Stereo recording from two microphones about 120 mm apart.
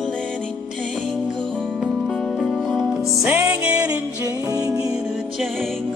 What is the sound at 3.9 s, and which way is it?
Music, 30° right (ahead or behind).